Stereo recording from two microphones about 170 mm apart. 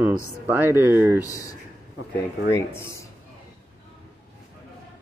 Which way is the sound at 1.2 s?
20° left (ahead or behind).